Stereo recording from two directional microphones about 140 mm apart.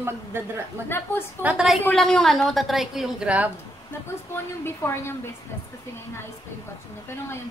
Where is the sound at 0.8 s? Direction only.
15° left (ahead or behind).